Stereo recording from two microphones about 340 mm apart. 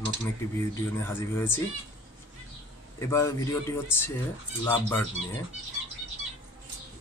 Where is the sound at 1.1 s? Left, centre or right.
Centre.